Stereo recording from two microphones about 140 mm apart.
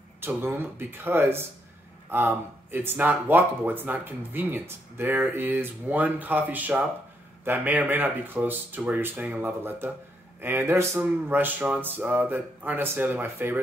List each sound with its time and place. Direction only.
0.2 s speech: 15° right (ahead or behind)